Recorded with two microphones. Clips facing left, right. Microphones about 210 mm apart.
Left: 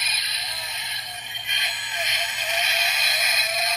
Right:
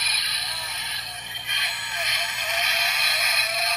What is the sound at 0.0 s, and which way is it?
Music, 25° left (ahead or behind).